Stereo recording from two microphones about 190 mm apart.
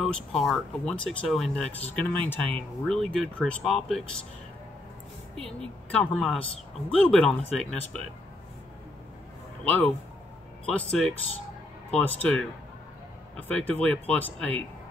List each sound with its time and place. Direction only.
0.0 s speech: centre (ahead or behind)
5.9 s speech: 5° left (ahead or behind)
9.7 s speech: 10° left (ahead or behind)